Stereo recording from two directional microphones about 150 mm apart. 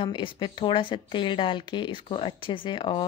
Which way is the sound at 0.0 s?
35° left (ahead or behind).